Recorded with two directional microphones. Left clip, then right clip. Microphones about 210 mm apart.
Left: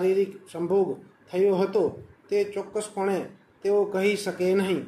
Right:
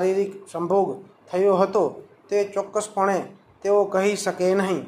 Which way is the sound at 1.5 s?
5° left (ahead or behind).